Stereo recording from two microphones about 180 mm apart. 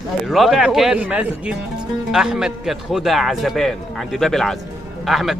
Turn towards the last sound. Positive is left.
turn(degrees=0)  # may be behind; listen again after turning